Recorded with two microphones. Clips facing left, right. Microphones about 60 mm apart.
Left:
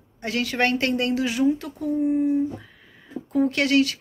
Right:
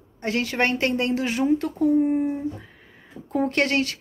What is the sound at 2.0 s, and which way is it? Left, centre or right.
A woman's voice, right.